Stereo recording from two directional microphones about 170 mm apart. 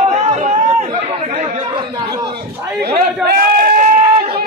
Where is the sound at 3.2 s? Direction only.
60° right (ahead or behind).